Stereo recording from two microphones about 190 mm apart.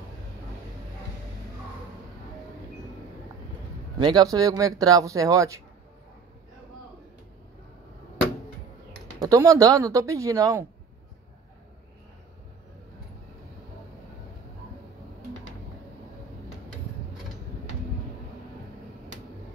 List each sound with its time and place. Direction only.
4.0 s speech: 20° right (ahead or behind)
9.2 s speech: 15° right (ahead or behind)